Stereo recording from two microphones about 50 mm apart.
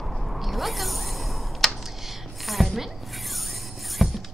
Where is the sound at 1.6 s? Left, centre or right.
Centre.